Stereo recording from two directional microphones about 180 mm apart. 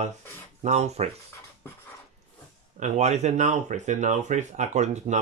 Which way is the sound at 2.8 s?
40° right (ahead or behind).